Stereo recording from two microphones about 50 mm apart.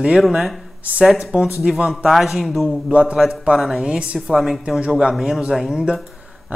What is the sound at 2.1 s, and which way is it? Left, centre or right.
Speech, centre.